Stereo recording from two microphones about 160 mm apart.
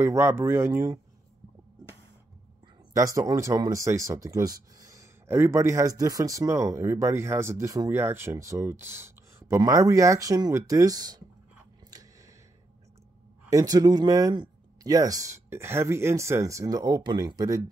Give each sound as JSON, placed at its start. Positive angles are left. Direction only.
{"t": 0.0, "sound": "speech", "side_deg": -15}
{"t": 2.9, "sound": "speech", "side_deg": -20}
{"t": 11.9, "sound": "a sound", "side_deg": -20}
{"t": 13.5, "sound": "speech", "side_deg": -20}